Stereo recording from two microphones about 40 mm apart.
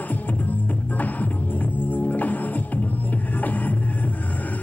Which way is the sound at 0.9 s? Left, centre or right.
Left.